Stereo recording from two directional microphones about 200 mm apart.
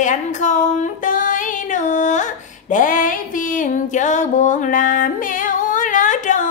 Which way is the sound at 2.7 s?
40° left (ahead or behind).